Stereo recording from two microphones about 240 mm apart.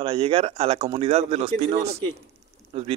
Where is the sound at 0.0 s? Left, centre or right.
Right.